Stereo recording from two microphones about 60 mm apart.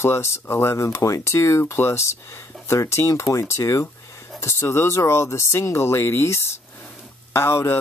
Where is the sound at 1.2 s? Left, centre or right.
Left.